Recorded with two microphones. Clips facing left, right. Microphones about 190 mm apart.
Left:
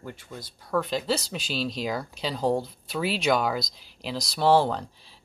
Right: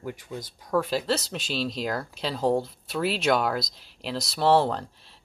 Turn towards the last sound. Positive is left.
turn(degrees=0)  # may be behind; listen again after turning